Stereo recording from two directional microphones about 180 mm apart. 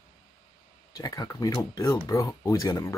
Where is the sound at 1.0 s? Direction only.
20° left (ahead or behind).